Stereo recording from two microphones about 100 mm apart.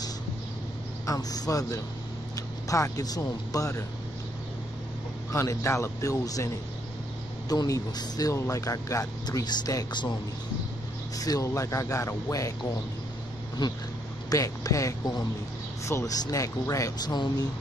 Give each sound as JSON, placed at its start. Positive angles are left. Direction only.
{"t": 1.0, "sound": "speech", "side_deg": 40}
{"t": 5.3, "sound": "speech", "side_deg": 30}
{"t": 11.1, "sound": "speech", "side_deg": 35}
{"t": 13.6, "sound": "speech", "side_deg": 50}
{"t": 14.3, "sound": "speech", "side_deg": 35}